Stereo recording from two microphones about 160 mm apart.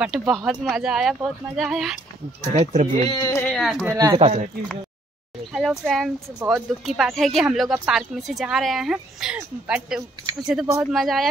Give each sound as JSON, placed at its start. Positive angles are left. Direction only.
{"t": 0.0, "sound": "a woman's voice", "side_deg": 0}
{"t": 2.5, "sound": "speech", "side_deg": -45}
{"t": 3.1, "sound": "speech", "side_deg": 20}
{"t": 3.5, "sound": "a woman's voice", "side_deg": 0}
{"t": 3.9, "sound": "speech", "side_deg": -25}
{"t": 4.2, "sound": "speech", "side_deg": -40}
{"t": 5.5, "sound": "a woman's voice", "side_deg": 0}